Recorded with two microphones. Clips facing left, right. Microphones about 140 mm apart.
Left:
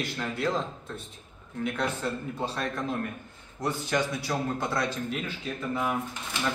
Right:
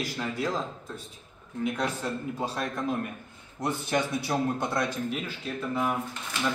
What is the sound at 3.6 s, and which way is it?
A man's voice, 20° right (ahead or behind).